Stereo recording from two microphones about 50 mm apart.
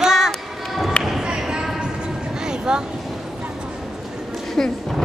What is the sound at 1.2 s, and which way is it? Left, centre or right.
Basketball bounce, centre.